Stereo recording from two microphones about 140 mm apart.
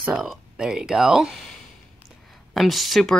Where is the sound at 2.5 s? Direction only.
Centre (ahead or behind).